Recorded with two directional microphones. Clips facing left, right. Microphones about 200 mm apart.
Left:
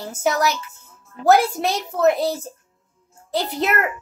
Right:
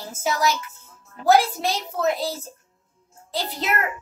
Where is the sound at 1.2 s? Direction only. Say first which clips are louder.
Left 2 dB; 60° left (ahead or behind).